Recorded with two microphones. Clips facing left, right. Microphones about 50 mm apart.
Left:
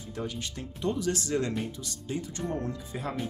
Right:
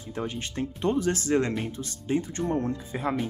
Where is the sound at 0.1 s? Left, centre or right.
Right.